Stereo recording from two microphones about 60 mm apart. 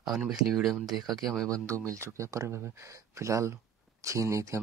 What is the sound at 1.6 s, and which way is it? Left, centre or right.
Speech, right.